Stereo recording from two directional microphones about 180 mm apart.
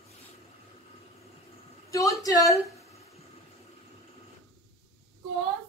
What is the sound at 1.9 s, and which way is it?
Speech, 20° left (ahead or behind).